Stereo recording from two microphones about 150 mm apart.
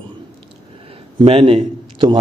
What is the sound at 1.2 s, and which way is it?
Speech, 40° right (ahead or behind).